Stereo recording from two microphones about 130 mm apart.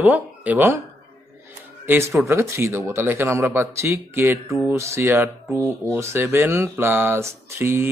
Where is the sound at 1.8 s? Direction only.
20° right (ahead or behind).